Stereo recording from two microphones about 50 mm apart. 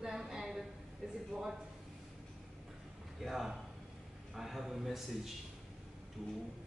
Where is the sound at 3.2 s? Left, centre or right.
Centre.